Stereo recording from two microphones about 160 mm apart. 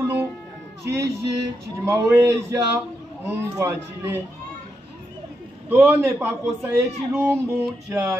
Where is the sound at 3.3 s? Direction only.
15° right (ahead or behind).